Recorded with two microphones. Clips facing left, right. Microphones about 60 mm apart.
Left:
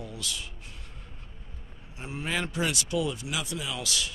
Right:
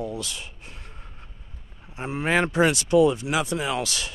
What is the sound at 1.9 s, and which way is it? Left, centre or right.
Speech, right.